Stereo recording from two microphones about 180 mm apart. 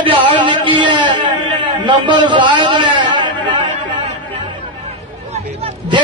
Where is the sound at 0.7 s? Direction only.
25° right (ahead or behind).